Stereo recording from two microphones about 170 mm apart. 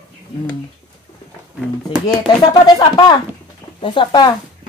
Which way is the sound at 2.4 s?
25° left (ahead or behind).